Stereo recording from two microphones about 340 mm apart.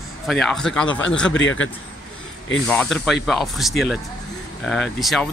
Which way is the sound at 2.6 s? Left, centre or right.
Centre.